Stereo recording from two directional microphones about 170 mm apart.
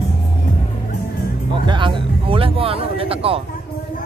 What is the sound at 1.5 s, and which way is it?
Music, 30° right (ahead or behind).